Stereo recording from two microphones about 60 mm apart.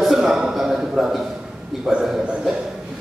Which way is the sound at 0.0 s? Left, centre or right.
Centre.